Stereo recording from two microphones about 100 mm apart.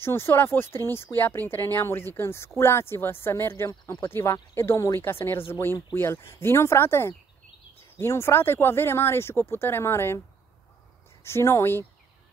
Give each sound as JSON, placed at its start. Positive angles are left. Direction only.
{"t": 0.0, "sound": "speech", "side_deg": 25}
{"t": 11.2, "sound": "speech", "side_deg": 25}